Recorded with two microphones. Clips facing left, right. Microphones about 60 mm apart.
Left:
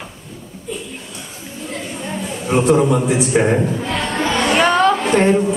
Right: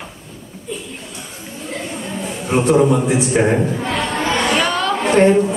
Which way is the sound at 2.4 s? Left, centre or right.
Centre.